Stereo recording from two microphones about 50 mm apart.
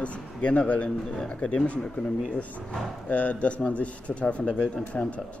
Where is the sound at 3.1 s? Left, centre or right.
Left.